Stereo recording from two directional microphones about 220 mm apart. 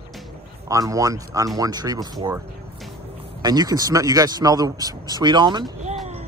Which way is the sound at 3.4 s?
15° right (ahead or behind).